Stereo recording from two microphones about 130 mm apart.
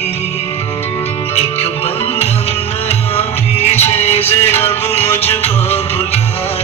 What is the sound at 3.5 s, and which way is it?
Music, 55° left (ahead or behind).